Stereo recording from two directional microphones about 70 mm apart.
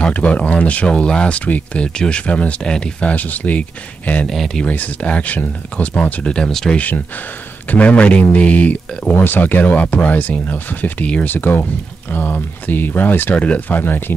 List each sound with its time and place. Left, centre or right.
0.1 s speech: centre
4.3 s speech: centre
4.6 s speech: centre